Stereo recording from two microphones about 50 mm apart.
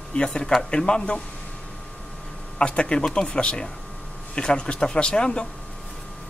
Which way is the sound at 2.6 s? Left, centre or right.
Left.